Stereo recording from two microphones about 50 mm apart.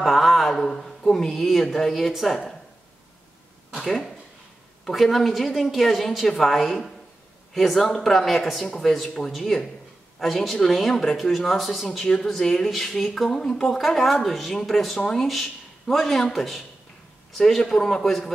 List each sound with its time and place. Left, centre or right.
0.0 s a sound: centre
1.3 s speech: centre
3.7 s speech: centre
12.1 s speech: centre